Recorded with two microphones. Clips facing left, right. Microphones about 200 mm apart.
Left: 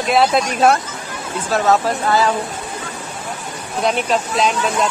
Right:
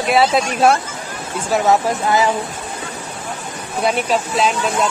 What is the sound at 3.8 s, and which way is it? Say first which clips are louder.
Speech: even; 5° right (ahead or behind).